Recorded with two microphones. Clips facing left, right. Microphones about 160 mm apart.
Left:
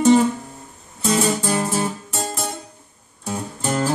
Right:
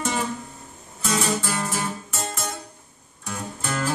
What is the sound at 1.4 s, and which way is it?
Guitar, 35° left (ahead or behind).